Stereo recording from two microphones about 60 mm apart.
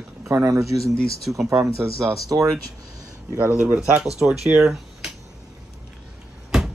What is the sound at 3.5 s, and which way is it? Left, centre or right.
Speech, centre.